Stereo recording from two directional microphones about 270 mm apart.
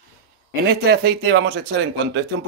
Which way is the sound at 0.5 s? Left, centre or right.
Right.